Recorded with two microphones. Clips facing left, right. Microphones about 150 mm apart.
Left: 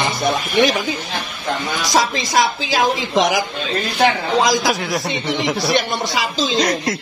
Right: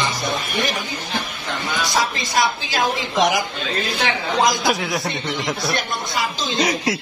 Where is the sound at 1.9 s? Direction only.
90° left.